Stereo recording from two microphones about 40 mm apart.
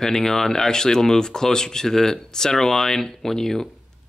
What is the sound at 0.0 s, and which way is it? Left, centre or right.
Speech, centre.